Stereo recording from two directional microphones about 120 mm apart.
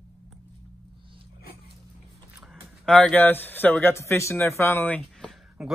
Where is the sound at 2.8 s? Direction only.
10° left (ahead or behind).